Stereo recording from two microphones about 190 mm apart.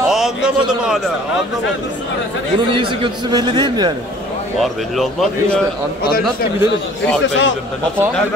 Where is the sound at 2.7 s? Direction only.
25° right (ahead or behind).